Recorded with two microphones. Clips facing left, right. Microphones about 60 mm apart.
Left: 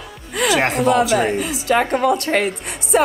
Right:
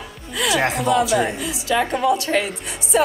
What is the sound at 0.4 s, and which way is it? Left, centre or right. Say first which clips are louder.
A woman's voice: left 3 dB; left.